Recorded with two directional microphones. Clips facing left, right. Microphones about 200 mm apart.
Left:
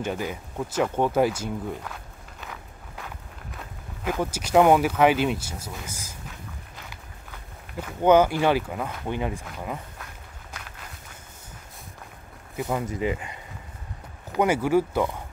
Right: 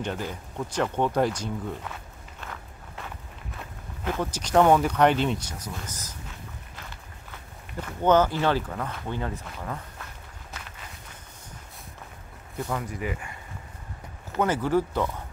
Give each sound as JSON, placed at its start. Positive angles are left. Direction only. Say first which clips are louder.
{"t": 0.0, "sound": "speech", "louder": "left 2 dB", "side_deg": 10}
{"t": 2.4, "sound": "walk", "louder": "even", "side_deg": 0}
{"t": 3.5, "sound": "speech", "louder": "even", "side_deg": 5}
{"t": 12.6, "sound": "speech", "louder": "left 5 dB", "side_deg": 20}